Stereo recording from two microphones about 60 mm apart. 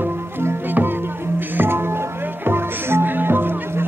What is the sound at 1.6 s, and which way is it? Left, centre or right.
Music, right.